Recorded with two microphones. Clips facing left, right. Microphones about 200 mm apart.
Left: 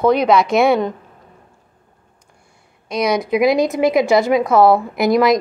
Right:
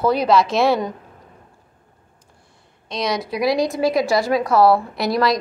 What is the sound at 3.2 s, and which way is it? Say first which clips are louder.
A woman's voice: left 4 dB; 20° left (ahead or behind).